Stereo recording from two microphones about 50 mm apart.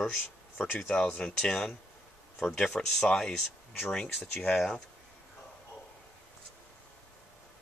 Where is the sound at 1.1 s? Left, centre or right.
Centre.